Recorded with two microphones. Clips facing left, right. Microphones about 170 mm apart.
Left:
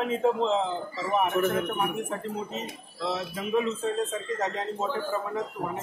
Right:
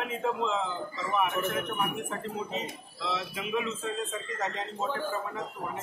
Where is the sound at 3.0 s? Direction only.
40° left (ahead or behind).